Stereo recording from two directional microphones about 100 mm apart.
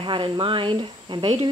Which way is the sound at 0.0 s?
55° right (ahead or behind).